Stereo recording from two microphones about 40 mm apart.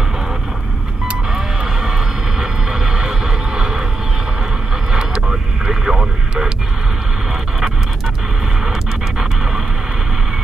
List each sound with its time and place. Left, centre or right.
1.3 s music: centre
2.4 s vehicle: centre
5.7 s vehicle: centre